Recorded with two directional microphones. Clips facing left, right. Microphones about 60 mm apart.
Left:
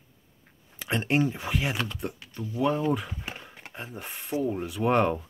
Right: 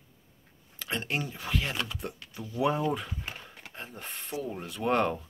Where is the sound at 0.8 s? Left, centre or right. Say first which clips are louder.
Left 7 dB; left.